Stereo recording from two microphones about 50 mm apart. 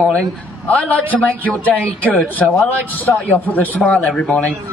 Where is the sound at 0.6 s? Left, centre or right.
Left.